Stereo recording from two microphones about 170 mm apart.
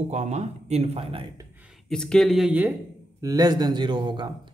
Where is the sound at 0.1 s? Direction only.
40° right (ahead or behind).